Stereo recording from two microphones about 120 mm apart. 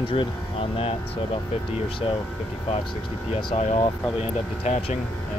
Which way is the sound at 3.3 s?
60° left (ahead or behind).